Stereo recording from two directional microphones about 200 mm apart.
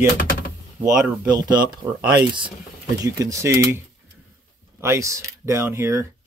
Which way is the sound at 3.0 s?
15° right (ahead or behind).